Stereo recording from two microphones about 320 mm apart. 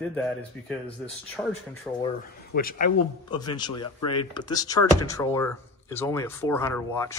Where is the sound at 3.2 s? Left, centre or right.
Centre.